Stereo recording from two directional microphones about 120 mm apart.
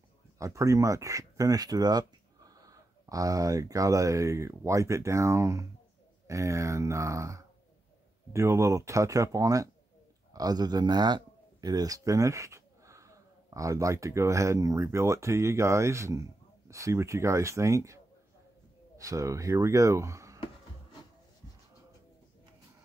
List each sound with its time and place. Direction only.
0.4 s speech: 25° right (ahead or behind)